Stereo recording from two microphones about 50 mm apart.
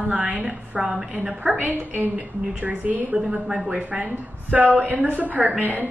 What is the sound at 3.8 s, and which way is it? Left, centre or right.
A woman's voice, right.